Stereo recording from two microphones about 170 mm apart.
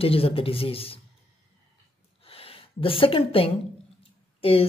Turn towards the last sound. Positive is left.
turn(degrees=35)  # may be behind; listen again after turning